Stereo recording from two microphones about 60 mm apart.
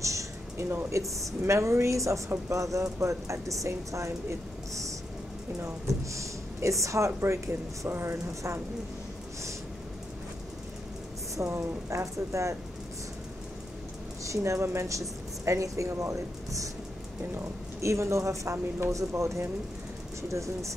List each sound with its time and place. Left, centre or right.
0.0 s a sound: right
0.8 s a woman's voice: right
6.1 s speech: right
7.9 s a woman's voice: right
11.3 s a woman's voice: right
14.2 s speech: right
17.7 s a woman's voice: right